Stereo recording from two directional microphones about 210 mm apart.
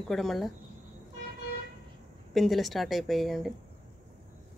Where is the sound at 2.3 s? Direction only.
Centre (ahead or behind).